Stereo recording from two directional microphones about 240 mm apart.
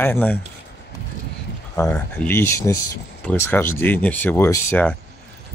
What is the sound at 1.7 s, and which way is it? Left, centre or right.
Speech, centre.